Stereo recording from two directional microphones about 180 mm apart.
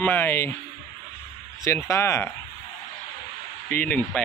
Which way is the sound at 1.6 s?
15° left (ahead or behind).